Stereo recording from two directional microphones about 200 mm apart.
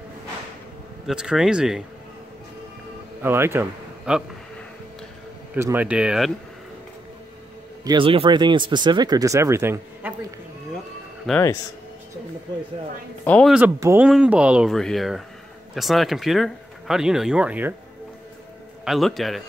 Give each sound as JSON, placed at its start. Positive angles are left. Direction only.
{"t": 1.0, "sound": "speech", "side_deg": -5}
{"t": 3.2, "sound": "a man's voice", "side_deg": -10}
{"t": 5.5, "sound": "speech", "side_deg": -10}
{"t": 7.8, "sound": "speech", "side_deg": -25}
{"t": 11.3, "sound": "speech", "side_deg": 0}
{"t": 13.2, "sound": "speech", "side_deg": 5}
{"t": 13.7, "sound": "speech", "side_deg": -15}
{"t": 18.9, "sound": "speech", "side_deg": 0}